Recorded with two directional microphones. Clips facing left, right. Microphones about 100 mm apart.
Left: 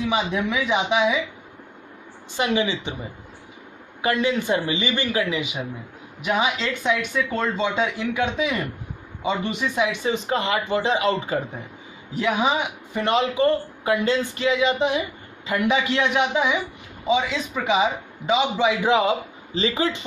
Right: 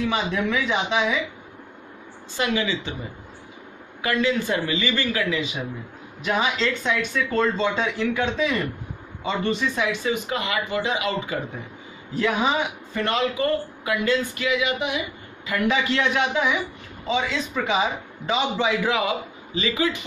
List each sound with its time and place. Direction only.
0.1 s speech: 15° left (ahead or behind)
2.3 s a man's voice: 25° left (ahead or behind)
4.0 s a man's voice: 25° left (ahead or behind)
12.2 s a man's voice: 15° left (ahead or behind); by 15.5 s 30° left (ahead or behind)
15.5 s a man's voice: 20° left (ahead or behind)
18.8 s a man's voice: 25° left (ahead or behind)